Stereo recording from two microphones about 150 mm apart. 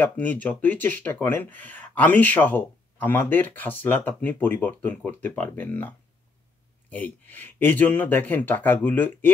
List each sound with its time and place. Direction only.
0.0 s speech: 10° left (ahead or behind)